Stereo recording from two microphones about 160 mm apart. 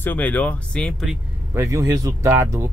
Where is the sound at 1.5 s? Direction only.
20° right (ahead or behind).